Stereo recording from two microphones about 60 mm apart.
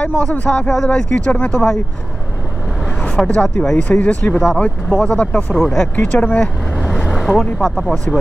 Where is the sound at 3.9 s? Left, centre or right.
Left.